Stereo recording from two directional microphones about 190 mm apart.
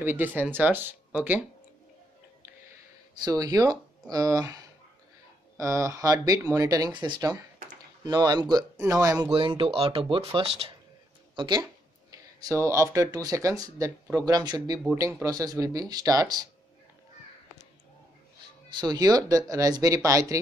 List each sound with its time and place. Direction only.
0.0 s speech: 10° right (ahead or behind)
3.3 s speech: 20° right (ahead or behind)
9.3 s speech: 25° right (ahead or behind)
18.7 s speech: 20° right (ahead or behind)